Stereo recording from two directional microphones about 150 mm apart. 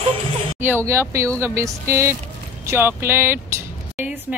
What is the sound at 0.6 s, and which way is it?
A woman's voice, 15° right (ahead or behind).